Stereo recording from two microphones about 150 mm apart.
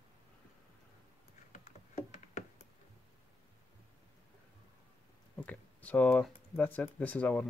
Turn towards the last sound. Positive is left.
turn(degrees=10)  # may be behind; listen again after turning